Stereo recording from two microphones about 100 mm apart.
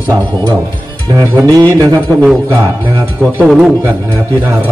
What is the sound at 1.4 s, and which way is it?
Speech, 40° right (ahead or behind).